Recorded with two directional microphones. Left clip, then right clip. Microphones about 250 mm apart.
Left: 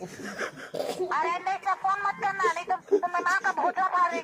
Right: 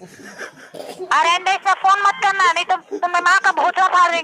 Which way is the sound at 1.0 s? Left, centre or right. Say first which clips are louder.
Right 13 dB; right.